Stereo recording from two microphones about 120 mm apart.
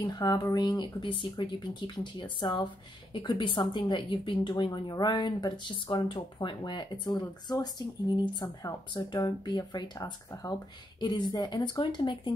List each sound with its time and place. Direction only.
0.0 s speech: 35° left (ahead or behind)